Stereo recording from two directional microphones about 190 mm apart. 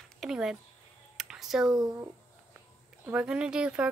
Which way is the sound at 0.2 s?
5° right (ahead or behind).